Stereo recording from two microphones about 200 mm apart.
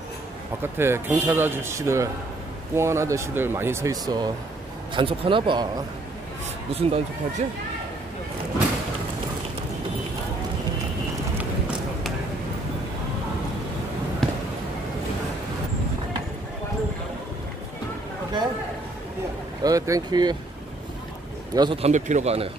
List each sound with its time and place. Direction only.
0.6 s speech: 10° right (ahead or behind)
6.7 s speech: 30° right (ahead or behind)
14.2 s basketball bounce: centre (ahead or behind)
19.6 s speech: 20° right (ahead or behind)
21.5 s speech: 25° right (ahead or behind)
21.9 s a man's voice: 35° right (ahead or behind)